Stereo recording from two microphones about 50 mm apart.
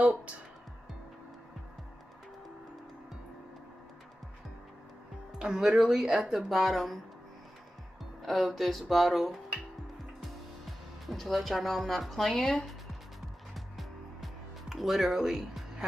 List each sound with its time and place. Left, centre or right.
0.0 s music: right
5.4 s speech: centre
8.0 s speech: centre
11.1 s speech: centre
13.7 s music: centre